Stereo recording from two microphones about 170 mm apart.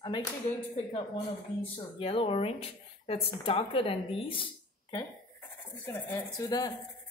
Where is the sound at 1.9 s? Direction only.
30° left (ahead or behind).